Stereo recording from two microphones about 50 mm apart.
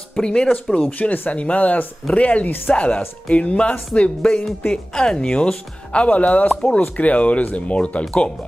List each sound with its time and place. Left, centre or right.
0.1 s speech: centre
0.7 s speech: left
2.4 s speech: left
2.7 s speech: left